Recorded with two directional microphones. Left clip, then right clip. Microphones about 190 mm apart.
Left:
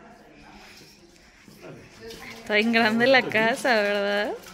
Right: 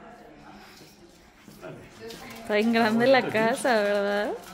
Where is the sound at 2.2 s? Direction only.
Centre (ahead or behind).